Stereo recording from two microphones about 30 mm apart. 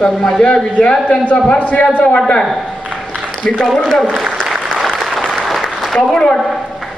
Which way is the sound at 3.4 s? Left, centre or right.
Left.